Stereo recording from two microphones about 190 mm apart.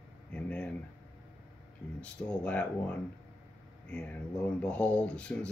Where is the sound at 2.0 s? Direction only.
5° left (ahead or behind).